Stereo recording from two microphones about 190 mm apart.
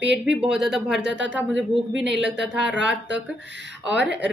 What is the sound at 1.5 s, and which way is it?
Speech, 75° right (ahead or behind).